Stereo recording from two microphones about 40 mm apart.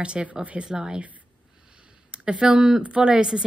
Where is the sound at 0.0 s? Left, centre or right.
Right.